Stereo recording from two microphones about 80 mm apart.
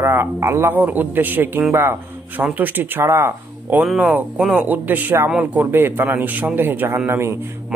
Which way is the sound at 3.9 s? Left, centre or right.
Centre.